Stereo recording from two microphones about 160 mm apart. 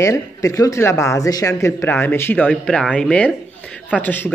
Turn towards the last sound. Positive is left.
turn(degrees=10)  # may be behind; listen again after turning